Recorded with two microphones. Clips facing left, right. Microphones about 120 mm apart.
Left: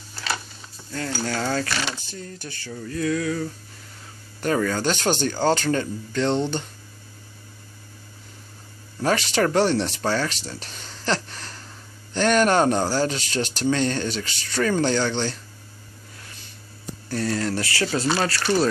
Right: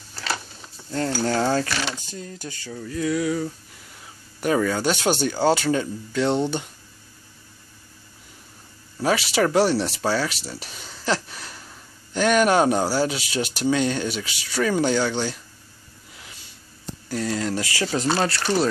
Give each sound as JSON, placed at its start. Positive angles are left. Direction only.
{"t": 1.2, "sound": "speech", "side_deg": -25}
{"t": 9.0, "sound": "speech", "side_deg": -5}
{"t": 17.1, "sound": "speech", "side_deg": -15}